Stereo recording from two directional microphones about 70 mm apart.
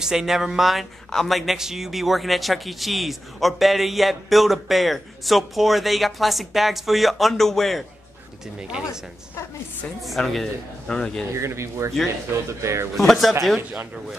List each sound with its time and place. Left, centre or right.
0.0 s speech: centre
8.5 s speech: centre
10.0 s speech: centre
10.9 s a man's voice: centre
11.3 s speech: right
12.9 s speech: centre